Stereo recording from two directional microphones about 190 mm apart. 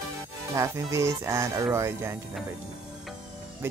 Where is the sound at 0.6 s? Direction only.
15° right (ahead or behind).